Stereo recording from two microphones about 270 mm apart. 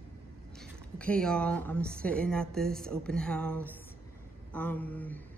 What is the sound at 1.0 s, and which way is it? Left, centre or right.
A woman's voice, centre.